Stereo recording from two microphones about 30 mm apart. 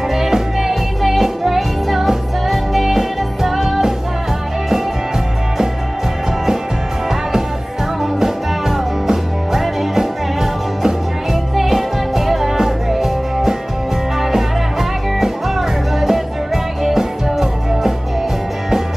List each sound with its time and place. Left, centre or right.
0.1 s music: centre
8.0 s music: centre